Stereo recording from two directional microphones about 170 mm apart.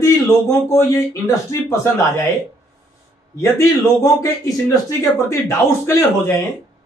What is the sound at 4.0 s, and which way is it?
A man's voice, 20° left (ahead or behind).